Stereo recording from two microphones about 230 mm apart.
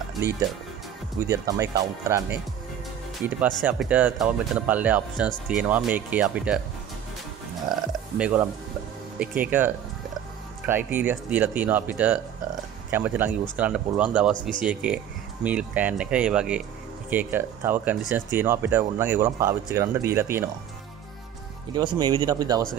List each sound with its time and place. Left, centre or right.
1.2 s speech: centre
7.7 s music: centre
8.2 s speech: centre
21.7 s speech: centre